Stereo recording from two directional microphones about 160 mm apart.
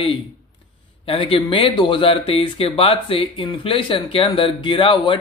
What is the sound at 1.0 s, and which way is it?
Speech, 35° left (ahead or behind).